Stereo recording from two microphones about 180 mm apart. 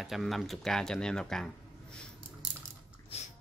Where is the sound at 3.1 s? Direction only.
35° left (ahead or behind).